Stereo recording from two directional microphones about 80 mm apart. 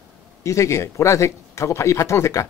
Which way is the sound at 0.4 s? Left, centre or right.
Left.